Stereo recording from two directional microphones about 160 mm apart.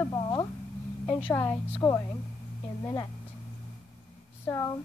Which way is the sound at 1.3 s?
15° left (ahead or behind).